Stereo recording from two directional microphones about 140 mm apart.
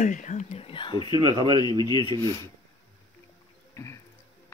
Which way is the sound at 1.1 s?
30° right (ahead or behind).